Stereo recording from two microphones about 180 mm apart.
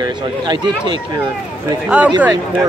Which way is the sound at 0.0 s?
25° right (ahead or behind).